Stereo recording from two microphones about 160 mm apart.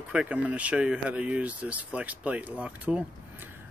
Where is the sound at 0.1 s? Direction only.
10° right (ahead or behind).